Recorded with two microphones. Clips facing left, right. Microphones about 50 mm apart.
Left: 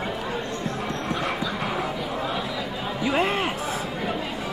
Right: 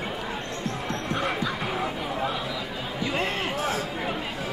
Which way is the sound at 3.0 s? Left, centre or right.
Centre.